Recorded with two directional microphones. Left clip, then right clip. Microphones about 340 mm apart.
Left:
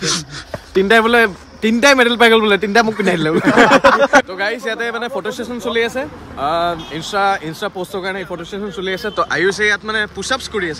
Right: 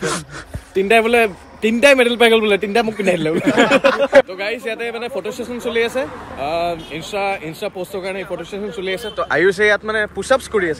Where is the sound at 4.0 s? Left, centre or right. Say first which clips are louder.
Left 1 dB; centre.